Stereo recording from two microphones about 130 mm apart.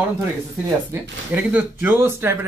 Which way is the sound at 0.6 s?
15° right (ahead or behind).